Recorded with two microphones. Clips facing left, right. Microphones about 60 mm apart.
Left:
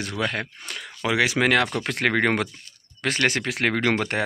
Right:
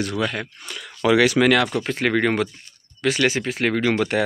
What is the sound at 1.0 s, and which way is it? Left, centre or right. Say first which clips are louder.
Speech: right 6 dB; centre.